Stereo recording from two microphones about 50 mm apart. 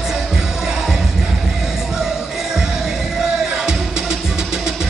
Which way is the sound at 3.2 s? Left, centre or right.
Centre.